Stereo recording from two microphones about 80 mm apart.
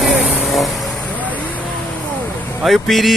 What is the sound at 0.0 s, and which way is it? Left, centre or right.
Vehicle, centre.